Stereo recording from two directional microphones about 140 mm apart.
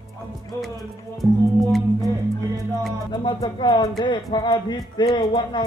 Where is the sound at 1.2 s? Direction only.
Centre (ahead or behind).